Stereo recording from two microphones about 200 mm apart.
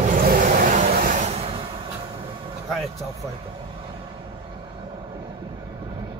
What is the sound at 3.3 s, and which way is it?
Vehicle, 25° right (ahead or behind).